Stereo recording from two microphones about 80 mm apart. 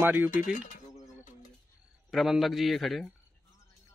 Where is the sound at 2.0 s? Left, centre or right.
Centre.